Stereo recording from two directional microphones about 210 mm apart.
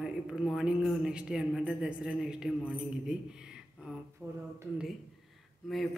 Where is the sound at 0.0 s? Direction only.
Centre (ahead or behind).